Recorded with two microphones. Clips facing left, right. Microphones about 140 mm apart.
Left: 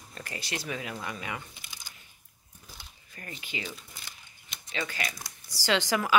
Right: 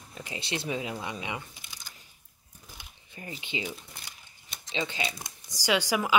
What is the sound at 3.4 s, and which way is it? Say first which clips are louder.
Speech: right 4 dB; 25° right (ahead or behind).